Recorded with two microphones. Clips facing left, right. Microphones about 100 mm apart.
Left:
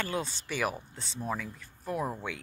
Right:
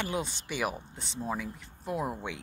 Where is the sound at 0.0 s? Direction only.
20° right (ahead or behind).